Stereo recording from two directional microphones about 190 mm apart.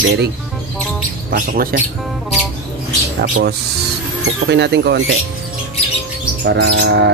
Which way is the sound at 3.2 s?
60° right (ahead or behind).